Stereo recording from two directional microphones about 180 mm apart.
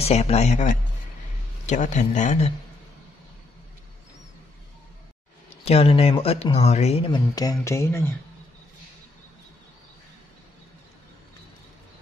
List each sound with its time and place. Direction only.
0.0 s speech: 35° left (ahead or behind)
5.7 s speech: 35° left (ahead or behind); by 8.1 s 15° left (ahead or behind)